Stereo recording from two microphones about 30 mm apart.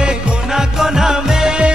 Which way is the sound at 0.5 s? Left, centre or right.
Centre.